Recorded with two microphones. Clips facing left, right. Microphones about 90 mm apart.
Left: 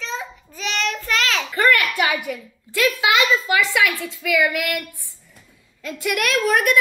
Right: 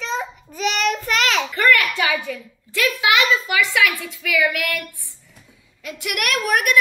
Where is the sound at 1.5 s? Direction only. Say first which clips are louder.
Left 1 dB; 25° left (ahead or behind).